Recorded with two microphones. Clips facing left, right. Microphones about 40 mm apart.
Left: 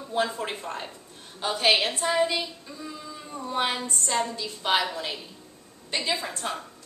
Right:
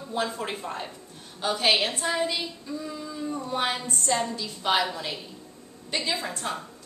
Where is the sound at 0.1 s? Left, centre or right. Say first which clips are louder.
Left 2 dB; centre.